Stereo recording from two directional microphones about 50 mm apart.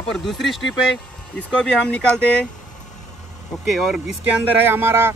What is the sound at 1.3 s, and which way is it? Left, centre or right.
Speech, centre.